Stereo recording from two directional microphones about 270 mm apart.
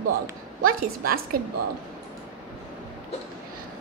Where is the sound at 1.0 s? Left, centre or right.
Right.